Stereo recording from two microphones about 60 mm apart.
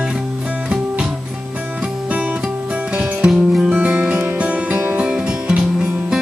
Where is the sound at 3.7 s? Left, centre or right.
Right.